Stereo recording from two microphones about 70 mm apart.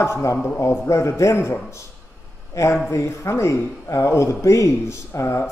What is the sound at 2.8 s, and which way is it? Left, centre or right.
Speech, left.